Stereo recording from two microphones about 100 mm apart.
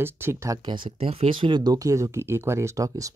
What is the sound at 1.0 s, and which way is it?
A man's voice, 70° right (ahead or behind).